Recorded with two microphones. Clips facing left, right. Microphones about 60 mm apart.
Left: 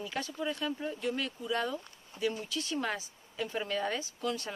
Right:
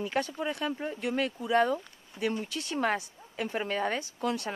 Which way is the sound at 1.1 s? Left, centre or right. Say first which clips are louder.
Right 7 dB; right.